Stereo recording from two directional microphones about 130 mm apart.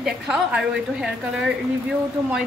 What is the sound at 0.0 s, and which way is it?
Speech, 5° right (ahead or behind).